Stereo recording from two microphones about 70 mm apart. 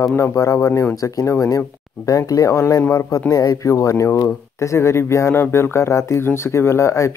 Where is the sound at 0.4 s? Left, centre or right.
Left.